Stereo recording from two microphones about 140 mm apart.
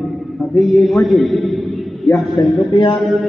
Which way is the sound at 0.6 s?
Centre (ahead or behind).